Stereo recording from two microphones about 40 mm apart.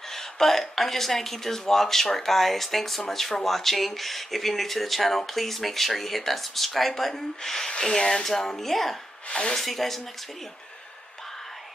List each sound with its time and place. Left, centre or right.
0.1 s speech: centre
9.3 s speech: left
9.6 s speech: centre